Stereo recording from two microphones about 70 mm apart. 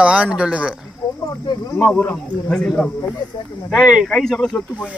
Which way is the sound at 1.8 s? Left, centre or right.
Left.